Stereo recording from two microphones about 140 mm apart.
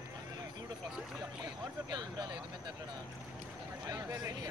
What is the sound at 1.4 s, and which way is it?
Speech, 30° right (ahead or behind).